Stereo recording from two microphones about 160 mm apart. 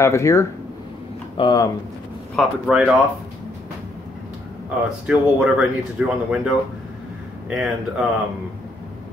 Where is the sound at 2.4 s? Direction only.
5° left (ahead or behind).